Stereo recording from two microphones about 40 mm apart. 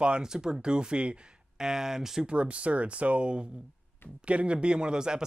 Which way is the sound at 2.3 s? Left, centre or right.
Right.